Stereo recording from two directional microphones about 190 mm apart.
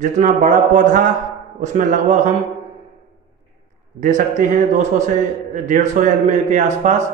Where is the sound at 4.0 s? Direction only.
40° right (ahead or behind).